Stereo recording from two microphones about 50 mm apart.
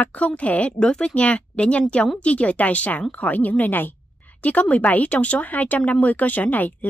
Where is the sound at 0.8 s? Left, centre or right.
Centre.